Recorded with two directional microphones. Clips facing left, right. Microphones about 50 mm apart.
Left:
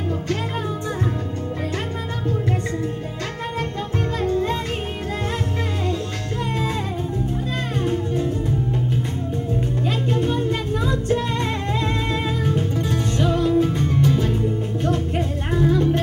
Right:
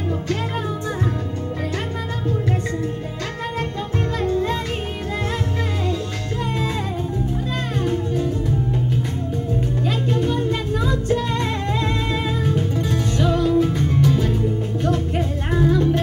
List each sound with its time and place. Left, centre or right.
7.8 s music: centre
9.8 s music: centre
10.7 s music: centre
14.0 s music: centre
15.6 s music: centre